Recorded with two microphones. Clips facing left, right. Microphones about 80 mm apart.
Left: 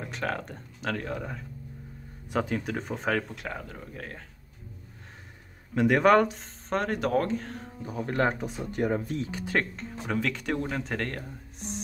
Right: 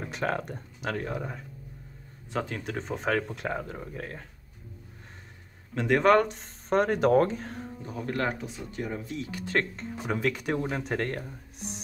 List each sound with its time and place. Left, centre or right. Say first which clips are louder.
0.1 s speech: right 3 dB; centre
2.3 s speech: left 3 dB; centre
3.3 s speech: right 4 dB; right
3.7 s speech: right 3 dB; centre
5.8 s speech: left 1 dB; centre
6.7 s speech: right 4 dB; centre
7.8 s speech: left 5 dB; centre
8.1 s speech: left 3 dB; left
8.4 s speech: left 6 dB; left
9.3 s speech: even; centre
9.6 s speech: right 1 dB; centre
10.1 s speech: right 1 dB; centre